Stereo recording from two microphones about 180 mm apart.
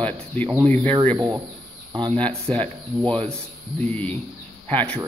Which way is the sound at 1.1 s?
20° right (ahead or behind).